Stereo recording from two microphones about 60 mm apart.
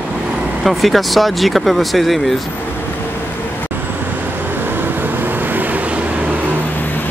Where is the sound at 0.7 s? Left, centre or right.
Centre.